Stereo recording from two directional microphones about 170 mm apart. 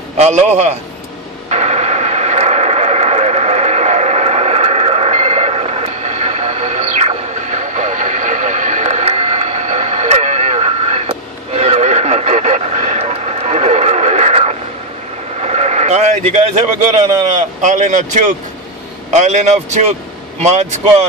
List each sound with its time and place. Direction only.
0.2 s speech: 40° right (ahead or behind)
1.5 s radio: 40° right (ahead or behind)
15.4 s sheep: 40° right (ahead or behind)
17.6 s speech: 45° right (ahead or behind)